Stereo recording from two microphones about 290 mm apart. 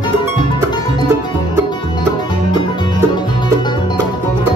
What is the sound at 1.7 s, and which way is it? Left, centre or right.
Music, centre.